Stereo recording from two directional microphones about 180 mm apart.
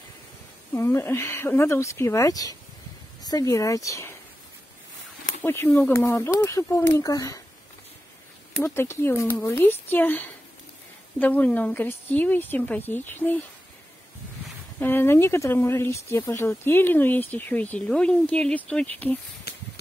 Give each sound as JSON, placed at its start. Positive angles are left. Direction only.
{"t": 0.7, "sound": "speech", "side_deg": 15}
{"t": 5.4, "sound": "speech", "side_deg": 10}
{"t": 8.6, "sound": "speech", "side_deg": 15}
{"t": 14.8, "sound": "speech", "side_deg": 10}
{"t": 19.5, "sound": "a sound", "side_deg": 65}